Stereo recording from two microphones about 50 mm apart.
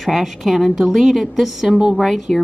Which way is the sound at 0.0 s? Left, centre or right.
Centre.